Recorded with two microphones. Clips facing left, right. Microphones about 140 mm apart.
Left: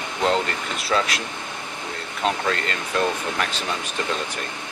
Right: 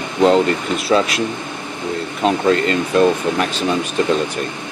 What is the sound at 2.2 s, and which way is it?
Speech, 20° right (ahead or behind).